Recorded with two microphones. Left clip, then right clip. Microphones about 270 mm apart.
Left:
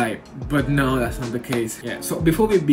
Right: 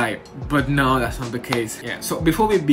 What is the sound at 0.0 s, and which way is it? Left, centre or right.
Speech, centre.